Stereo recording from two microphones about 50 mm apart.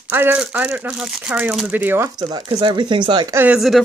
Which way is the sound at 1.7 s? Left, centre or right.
Right.